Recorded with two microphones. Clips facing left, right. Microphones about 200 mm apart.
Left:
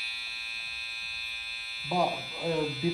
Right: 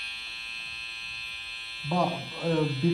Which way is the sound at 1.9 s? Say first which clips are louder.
Right 1 dB; centre (ahead or behind).